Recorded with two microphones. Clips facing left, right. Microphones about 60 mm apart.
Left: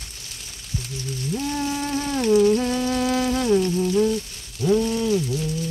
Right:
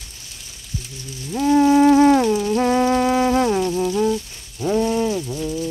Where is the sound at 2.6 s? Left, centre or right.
Right.